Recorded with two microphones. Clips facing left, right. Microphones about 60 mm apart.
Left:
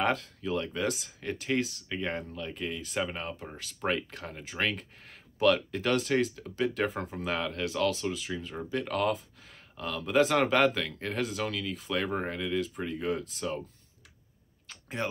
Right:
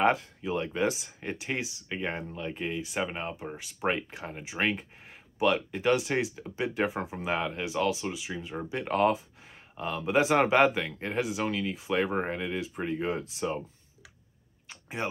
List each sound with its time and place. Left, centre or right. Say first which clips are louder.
0.0 s speech: right 4 dB; centre
8.8 s speech: right 6 dB; right
14.7 s a sound: even; centre